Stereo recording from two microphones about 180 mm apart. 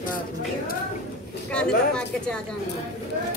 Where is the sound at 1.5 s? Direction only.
5° left (ahead or behind).